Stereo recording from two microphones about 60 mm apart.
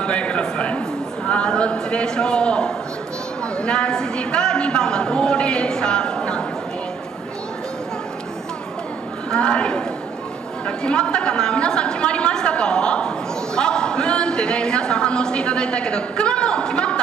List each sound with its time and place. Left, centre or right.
0.0 s a man's voice: centre
3.5 s a sound: centre
9.3 s a woman's voice: centre